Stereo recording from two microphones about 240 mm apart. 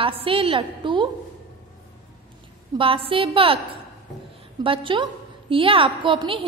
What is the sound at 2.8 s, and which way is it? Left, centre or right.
Speech, right.